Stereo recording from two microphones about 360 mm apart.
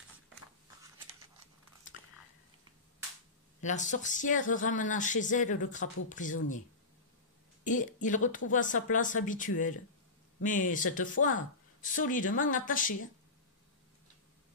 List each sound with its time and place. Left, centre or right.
3.6 s speech: centre
7.6 s speech: left